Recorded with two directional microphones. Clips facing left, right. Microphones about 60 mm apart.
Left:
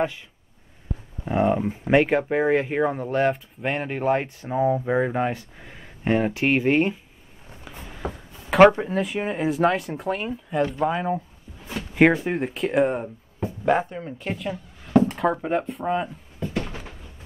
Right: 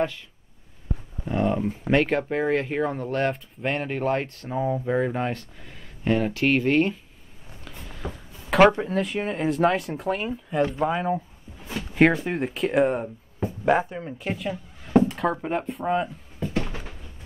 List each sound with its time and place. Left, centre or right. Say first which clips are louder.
1.2 s speech: left 3 dB; left
7.6 s a sound: left 3 dB; centre
8.1 s speech: right 1 dB; centre